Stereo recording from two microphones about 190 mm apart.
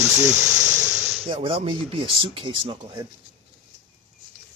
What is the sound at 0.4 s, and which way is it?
Insect, 15° right (ahead or behind).